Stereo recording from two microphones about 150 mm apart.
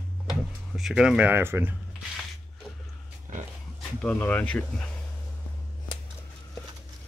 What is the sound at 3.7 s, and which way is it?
Speech, 10° left (ahead or behind).